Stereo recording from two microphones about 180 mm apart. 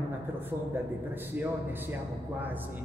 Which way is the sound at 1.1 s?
10° right (ahead or behind).